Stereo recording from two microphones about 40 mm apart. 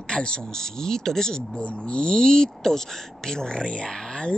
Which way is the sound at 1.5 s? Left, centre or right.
Left.